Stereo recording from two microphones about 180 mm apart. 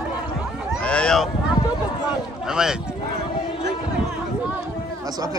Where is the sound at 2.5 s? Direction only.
5° right (ahead or behind).